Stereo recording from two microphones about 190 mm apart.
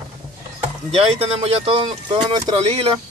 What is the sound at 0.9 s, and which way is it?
Speech, 30° right (ahead or behind).